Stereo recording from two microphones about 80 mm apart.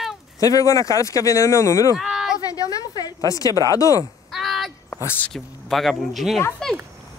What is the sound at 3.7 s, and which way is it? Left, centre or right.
Speech, left.